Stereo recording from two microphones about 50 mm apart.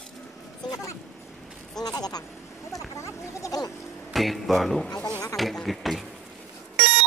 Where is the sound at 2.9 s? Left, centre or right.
Left.